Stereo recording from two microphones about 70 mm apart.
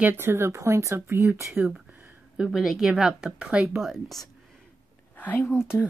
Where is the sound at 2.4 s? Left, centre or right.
Centre.